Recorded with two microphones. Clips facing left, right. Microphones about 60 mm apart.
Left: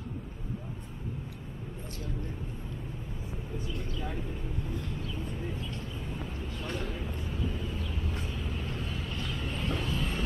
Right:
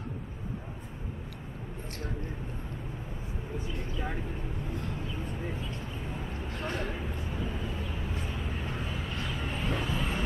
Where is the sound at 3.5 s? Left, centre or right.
Centre.